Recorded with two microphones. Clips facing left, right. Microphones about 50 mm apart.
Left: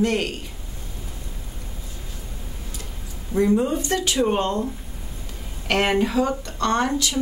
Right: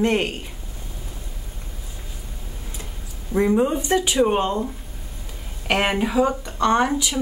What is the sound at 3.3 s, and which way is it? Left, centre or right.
Speech, centre.